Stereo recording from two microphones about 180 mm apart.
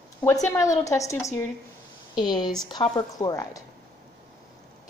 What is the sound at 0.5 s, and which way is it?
A woman's voice, 20° left (ahead or behind).